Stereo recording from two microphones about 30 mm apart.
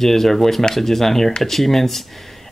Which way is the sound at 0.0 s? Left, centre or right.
Centre.